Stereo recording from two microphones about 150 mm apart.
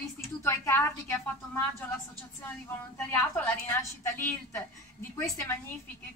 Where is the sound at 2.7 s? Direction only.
15° left (ahead or behind).